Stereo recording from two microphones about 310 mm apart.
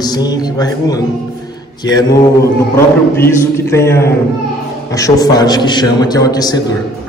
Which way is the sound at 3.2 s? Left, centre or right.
Centre.